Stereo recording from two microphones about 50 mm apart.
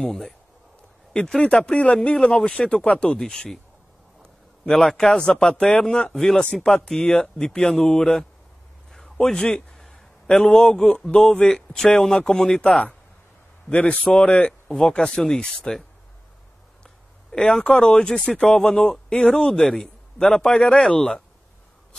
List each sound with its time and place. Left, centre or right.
0.0 s a man's voice: centre
4.2 s a sound: centre
5.0 s a man's voice: centre
8.9 s a sound: centre
10.2 s a man's voice: centre
13.7 s a man's voice: left; by 15.8 s centre
17.5 s a man's voice: centre